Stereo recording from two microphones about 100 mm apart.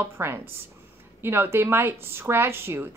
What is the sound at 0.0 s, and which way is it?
A woman's voice, 25° right (ahead or behind).